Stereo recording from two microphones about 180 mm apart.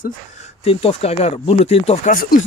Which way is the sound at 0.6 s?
35° left (ahead or behind).